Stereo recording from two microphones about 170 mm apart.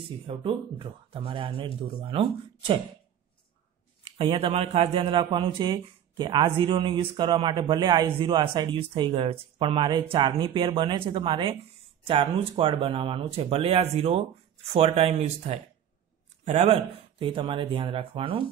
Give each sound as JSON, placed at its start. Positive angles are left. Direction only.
{"t": 0.3, "sound": "speech", "side_deg": -30}
{"t": 4.2, "sound": "a man's voice", "side_deg": -35}